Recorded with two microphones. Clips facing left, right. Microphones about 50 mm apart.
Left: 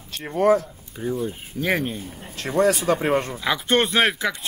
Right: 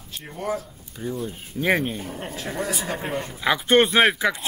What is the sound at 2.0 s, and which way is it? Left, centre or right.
Speech, right.